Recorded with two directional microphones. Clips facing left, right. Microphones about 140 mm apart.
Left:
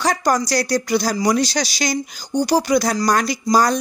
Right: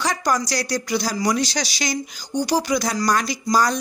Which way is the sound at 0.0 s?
45° left (ahead or behind).